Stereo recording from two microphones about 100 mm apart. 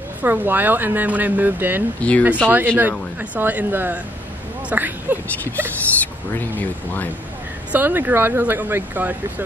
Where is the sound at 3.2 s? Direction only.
20° right (ahead or behind).